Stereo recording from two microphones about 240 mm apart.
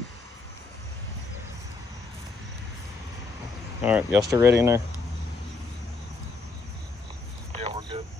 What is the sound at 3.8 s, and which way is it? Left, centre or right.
Speech, centre.